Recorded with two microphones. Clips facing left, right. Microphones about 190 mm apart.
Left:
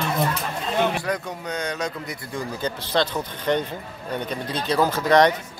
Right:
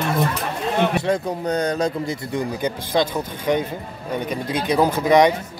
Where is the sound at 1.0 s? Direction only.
30° right (ahead or behind).